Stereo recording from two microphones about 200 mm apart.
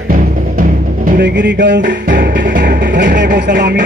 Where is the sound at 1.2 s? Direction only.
60° right (ahead or behind).